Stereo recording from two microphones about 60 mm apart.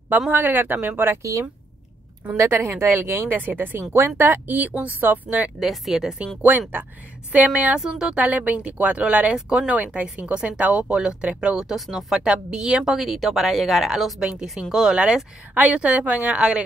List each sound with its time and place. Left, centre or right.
0.3 s speech: right
2.3 s speech: right
3.3 s speech: right
5.6 s speech: centre
7.4 s speech: centre
8.2 s speech: right